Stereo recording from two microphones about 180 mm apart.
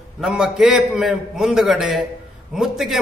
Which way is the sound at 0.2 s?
Centre (ahead or behind).